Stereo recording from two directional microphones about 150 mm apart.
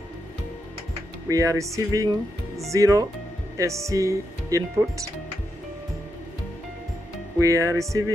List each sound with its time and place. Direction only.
1.3 s speech: 20° right (ahead or behind)
7.3 s speech: 20° right (ahead or behind)